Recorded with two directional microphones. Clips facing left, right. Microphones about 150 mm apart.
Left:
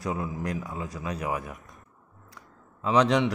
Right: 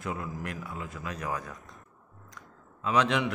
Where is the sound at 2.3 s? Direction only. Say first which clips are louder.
Left 2 dB; 30° left (ahead or behind).